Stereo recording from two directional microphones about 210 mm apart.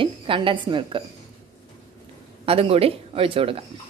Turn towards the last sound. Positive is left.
turn(degrees=-25)  # may be behind; listen again after turning